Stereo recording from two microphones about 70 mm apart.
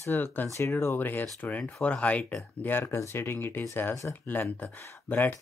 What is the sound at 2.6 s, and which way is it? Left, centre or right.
Speech, left.